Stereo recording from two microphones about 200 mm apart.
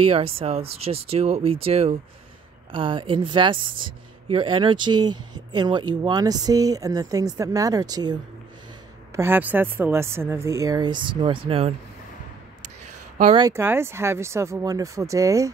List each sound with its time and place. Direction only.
0.0 s a woman's voice: 30° right (ahead or behind)
13.3 s speech: 15° right (ahead or behind)